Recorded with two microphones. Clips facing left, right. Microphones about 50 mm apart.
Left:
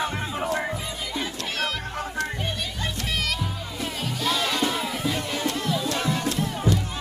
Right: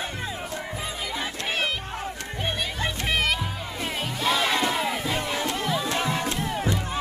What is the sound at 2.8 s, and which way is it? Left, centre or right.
Music, right.